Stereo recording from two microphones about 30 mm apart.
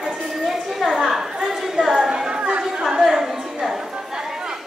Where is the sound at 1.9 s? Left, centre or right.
Right.